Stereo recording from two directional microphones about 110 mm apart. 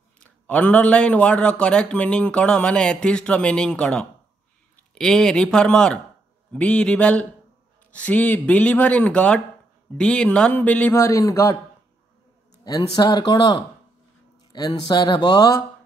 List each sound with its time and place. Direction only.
0.2 s a man's voice: 10° left (ahead or behind)
11.0 s a man's voice: 30° left (ahead or behind)
12.6 s speech: 35° left (ahead or behind)